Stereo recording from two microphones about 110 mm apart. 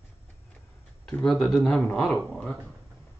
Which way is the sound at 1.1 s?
5° left (ahead or behind).